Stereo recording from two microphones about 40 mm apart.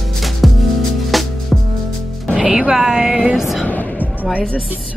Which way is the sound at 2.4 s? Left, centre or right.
Right.